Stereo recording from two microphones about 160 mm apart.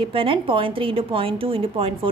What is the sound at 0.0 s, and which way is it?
A woman's voice, 35° right (ahead or behind).